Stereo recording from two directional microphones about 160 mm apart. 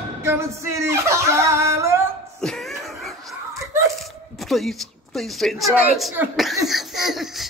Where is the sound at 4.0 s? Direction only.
Centre (ahead or behind).